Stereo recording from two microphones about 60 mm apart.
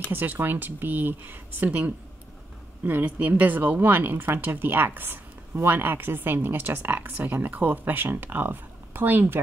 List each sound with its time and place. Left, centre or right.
0.1 s a woman's voice: right